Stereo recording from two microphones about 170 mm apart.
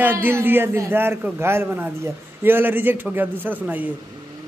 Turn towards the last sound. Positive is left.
turn(degrees=-10)  # may be behind; listen again after turning